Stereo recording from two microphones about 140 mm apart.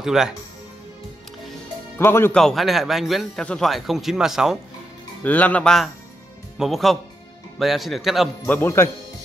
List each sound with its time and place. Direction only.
0.0 s speech: 5° right (ahead or behind)
2.0 s speech: 15° left (ahead or behind)
2.3 s a man's voice: centre (ahead or behind)
5.2 s a man's voice: 10° left (ahead or behind)
8.5 s speech: 15° left (ahead or behind)